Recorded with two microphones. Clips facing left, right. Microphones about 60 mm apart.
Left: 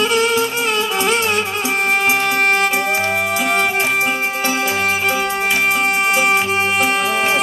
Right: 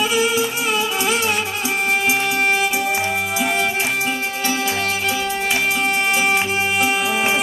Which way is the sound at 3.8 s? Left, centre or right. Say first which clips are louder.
Left 4 dB; left.